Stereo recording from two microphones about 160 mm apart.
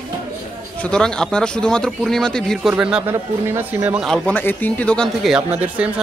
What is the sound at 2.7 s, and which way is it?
Speech, 5° right (ahead or behind).